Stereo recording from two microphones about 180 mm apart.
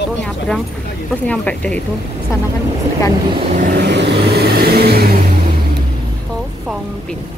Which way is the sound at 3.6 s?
60° right (ahead or behind).